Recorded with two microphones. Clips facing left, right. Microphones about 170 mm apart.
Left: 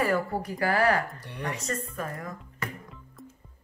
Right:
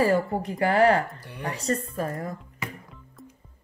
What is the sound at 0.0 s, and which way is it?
Speech, 25° right (ahead or behind).